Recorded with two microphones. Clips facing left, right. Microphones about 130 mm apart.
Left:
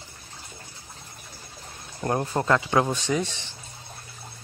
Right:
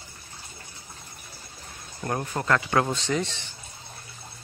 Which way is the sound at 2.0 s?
30° left (ahead or behind).